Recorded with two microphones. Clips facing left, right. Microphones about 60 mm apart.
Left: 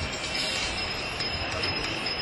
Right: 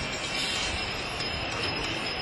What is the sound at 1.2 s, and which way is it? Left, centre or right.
Vehicle, left.